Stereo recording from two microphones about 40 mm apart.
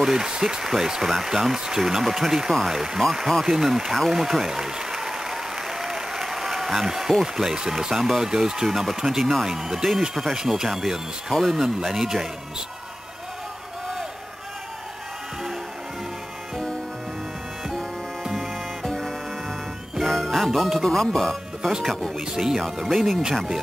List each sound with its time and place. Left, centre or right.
0.0 s speech: centre
18.9 s music: centre
20.8 s speech: centre
22.3 s speech: centre
22.8 s speech: centre